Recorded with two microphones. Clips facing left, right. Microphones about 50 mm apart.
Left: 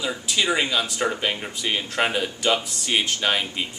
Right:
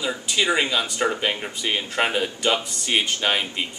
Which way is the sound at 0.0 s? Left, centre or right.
Centre.